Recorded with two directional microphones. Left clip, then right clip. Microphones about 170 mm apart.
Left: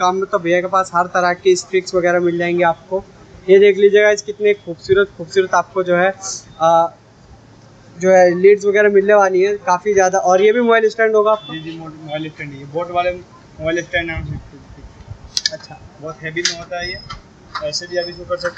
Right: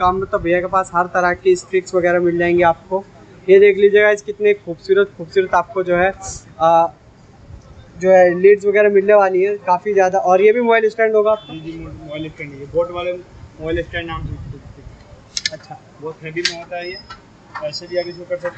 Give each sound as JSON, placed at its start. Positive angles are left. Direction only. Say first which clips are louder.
{"t": 0.0, "sound": "speech", "louder": "even", "side_deg": 0}
{"t": 8.0, "sound": "speech", "louder": "even", "side_deg": 0}
{"t": 12.1, "sound": "speech", "louder": "left 3 dB", "side_deg": 40}
{"t": 13.7, "sound": "speech", "louder": "left 4 dB", "side_deg": 30}
{"t": 16.7, "sound": "speech", "louder": "left 2 dB", "side_deg": 15}